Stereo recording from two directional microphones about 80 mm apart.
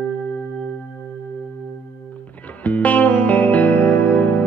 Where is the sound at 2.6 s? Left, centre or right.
Centre.